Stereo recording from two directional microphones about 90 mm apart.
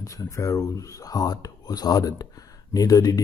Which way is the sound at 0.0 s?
40° left (ahead or behind).